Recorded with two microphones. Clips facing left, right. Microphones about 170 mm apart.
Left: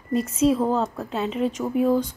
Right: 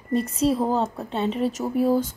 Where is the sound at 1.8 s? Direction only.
35° right (ahead or behind).